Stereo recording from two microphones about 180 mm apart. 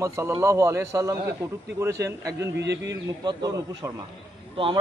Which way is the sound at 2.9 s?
20° right (ahead or behind).